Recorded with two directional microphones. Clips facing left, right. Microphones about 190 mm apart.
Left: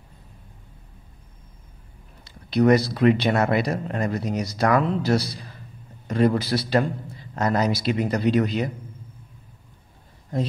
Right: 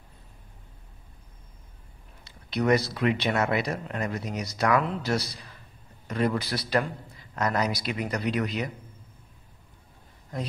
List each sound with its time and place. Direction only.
2.2 s a man's voice: 35° left (ahead or behind)